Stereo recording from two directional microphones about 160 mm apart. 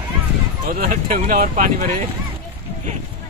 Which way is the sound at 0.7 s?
60° right (ahead or behind).